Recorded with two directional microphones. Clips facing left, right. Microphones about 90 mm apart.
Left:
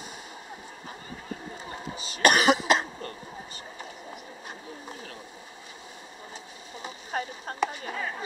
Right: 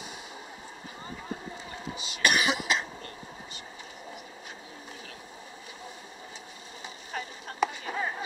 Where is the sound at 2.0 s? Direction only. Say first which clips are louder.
Left 5 dB; 40° left (ahead or behind).